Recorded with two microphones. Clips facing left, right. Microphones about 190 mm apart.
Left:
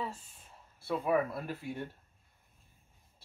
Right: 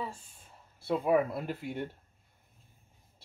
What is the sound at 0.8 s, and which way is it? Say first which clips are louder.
Speech: right 3 dB; 20° right (ahead or behind).